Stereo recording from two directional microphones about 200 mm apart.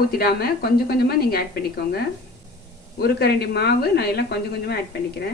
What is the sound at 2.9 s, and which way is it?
A woman's voice, 55° left (ahead or behind).